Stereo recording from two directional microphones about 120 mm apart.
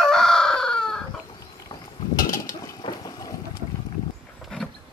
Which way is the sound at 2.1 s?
30° left (ahead or behind).